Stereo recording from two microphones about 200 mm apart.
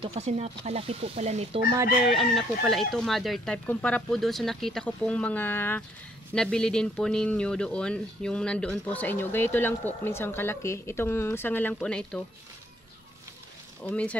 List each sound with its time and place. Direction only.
0.0 s speech: 30° right (ahead or behind)
2.0 s speech: centre (ahead or behind)
13.8 s speech: 5° left (ahead or behind)